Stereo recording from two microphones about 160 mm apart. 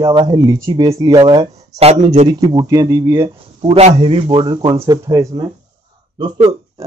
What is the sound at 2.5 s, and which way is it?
Speech, 25° right (ahead or behind).